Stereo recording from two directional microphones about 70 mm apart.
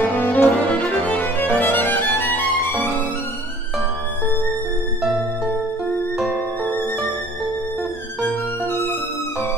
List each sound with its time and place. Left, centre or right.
0.0 s music: left
6.1 s music: centre